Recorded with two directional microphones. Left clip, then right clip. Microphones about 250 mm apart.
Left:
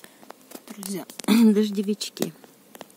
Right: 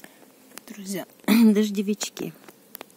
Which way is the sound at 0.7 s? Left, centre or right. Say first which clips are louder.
Right 1 dB; centre.